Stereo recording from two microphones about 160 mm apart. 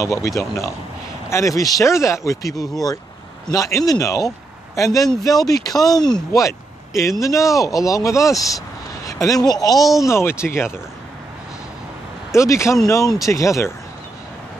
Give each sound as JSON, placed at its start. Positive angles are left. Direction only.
{"t": 0.0, "sound": "speech", "side_deg": 20}
{"t": 9.0, "sound": "vehicle", "side_deg": 20}
{"t": 9.5, "sound": "speech", "side_deg": 25}
{"t": 12.4, "sound": "speech", "side_deg": 20}